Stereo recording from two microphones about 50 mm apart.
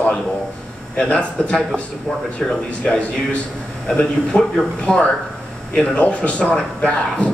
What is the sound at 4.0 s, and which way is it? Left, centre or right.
A man's voice, centre.